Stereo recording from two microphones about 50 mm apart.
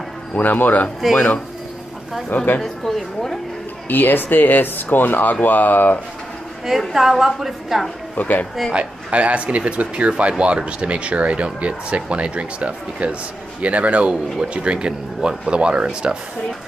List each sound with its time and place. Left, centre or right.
0.3 s speech: left
2.6 s speech: centre
3.9 s speech: left
6.9 s a woman's voice: centre
8.2 s speech: left
8.7 s speech: right